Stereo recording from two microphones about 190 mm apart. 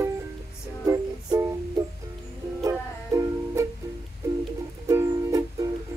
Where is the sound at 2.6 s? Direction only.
15° right (ahead or behind).